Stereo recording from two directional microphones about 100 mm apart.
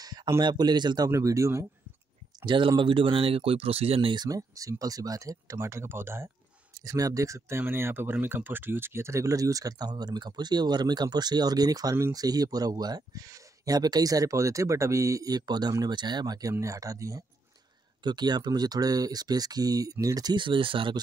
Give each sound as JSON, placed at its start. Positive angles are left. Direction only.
{"t": 0.0, "sound": "a sound", "side_deg": -40}
{"t": 0.4, "sound": "speech", "side_deg": -45}
{"t": 1.1, "sound": "speech", "side_deg": -30}
{"t": 2.4, "sound": "speech", "side_deg": -55}
{"t": 4.1, "sound": "speech", "side_deg": -40}
{"t": 6.8, "sound": "speech", "side_deg": -35}
{"t": 18.0, "sound": "speech", "side_deg": -45}
{"t": 20.3, "sound": "speech", "side_deg": -55}